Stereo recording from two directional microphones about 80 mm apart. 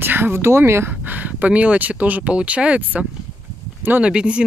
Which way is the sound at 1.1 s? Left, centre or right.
Right.